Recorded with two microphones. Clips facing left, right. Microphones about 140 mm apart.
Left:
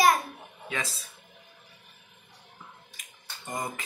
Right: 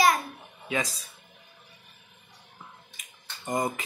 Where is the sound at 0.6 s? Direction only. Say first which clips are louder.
Right 4 dB; 15° right (ahead or behind).